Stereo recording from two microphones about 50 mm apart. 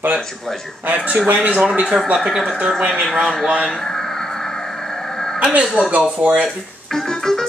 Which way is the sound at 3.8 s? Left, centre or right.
Centre.